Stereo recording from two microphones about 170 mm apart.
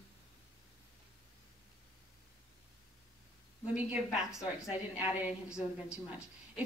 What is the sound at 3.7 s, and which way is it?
A woman's voice, 10° right (ahead or behind).